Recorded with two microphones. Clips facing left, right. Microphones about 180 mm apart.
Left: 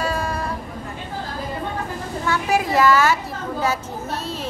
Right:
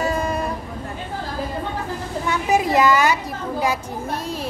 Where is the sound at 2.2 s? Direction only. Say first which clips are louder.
Right 1 dB; 20° right (ahead or behind).